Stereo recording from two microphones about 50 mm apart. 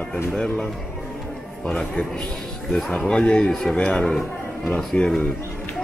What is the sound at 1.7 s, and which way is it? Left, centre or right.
Speech, left.